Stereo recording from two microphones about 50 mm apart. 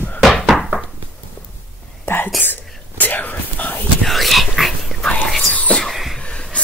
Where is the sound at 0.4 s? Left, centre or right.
Centre.